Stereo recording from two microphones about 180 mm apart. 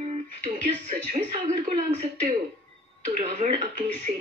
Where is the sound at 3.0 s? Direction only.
35° right (ahead or behind).